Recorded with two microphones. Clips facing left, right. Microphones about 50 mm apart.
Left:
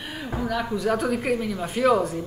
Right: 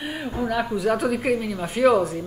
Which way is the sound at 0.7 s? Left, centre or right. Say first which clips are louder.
Right 2 dB; centre.